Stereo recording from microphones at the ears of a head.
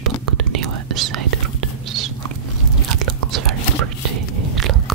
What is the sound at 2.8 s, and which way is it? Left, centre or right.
Biting, right.